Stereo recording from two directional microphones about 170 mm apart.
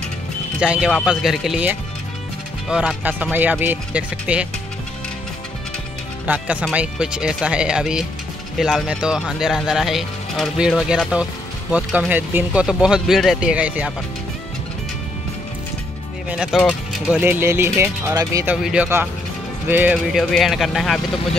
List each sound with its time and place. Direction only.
0.6 s speech: 5° right (ahead or behind)
6.2 s speech: 10° right (ahead or behind)
16.3 s speech: 5° right (ahead or behind)